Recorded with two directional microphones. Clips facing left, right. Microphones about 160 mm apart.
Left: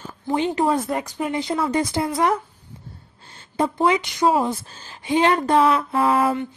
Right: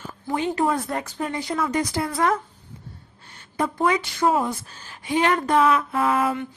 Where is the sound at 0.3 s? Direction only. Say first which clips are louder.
Left 3 dB; 25° left (ahead or behind).